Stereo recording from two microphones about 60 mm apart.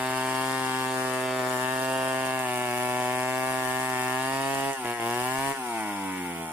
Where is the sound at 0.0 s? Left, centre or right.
Right.